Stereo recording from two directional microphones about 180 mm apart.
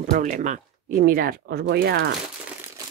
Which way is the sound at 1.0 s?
55° right (ahead or behind).